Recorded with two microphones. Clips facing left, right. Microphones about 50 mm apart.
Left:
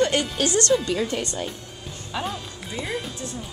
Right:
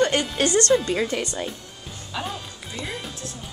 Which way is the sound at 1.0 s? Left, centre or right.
Right.